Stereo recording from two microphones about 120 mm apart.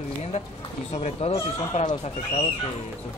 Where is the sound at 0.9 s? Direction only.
60° left (ahead or behind).